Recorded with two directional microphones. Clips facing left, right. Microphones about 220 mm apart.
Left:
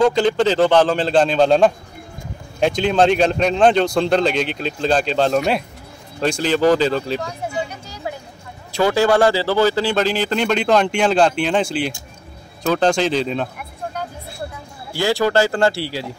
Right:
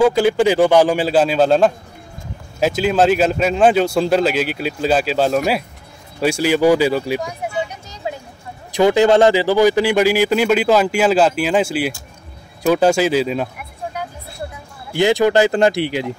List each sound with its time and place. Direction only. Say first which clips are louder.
0.0 s speech: right 2 dB; 10° right (ahead or behind)
14.9 s speech: right 4 dB; 20° right (ahead or behind)